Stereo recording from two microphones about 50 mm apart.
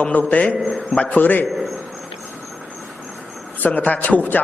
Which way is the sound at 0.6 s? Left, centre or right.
Centre.